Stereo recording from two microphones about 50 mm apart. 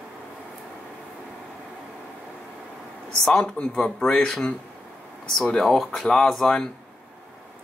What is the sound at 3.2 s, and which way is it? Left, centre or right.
Speech, centre.